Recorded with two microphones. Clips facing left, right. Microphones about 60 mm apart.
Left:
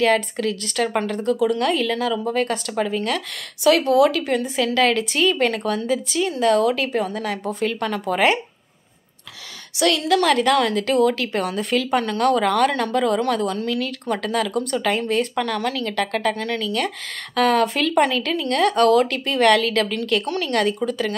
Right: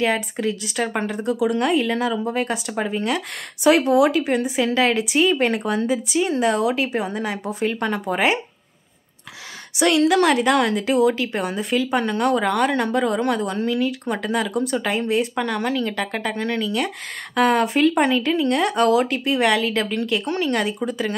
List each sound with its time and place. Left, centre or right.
0.0 s speech: centre
2.3 s speech: centre
9.8 s speech: right
12.0 s speech: centre